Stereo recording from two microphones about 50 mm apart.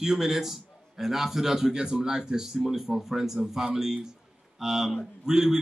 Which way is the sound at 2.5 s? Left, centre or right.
Centre.